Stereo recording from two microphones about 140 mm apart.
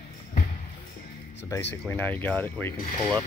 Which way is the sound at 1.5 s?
15° left (ahead or behind).